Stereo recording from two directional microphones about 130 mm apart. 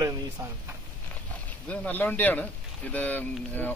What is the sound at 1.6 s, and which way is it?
Speech, 10° left (ahead or behind).